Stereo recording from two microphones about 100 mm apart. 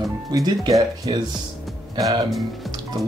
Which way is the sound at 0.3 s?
40° right (ahead or behind).